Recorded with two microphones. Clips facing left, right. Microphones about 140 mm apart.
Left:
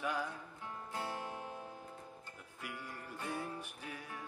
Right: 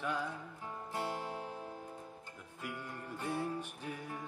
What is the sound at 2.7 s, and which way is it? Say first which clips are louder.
Music: right 3 dB; 15° right (ahead or behind).